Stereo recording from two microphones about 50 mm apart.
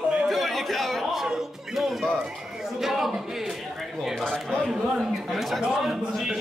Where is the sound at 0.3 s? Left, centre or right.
Centre.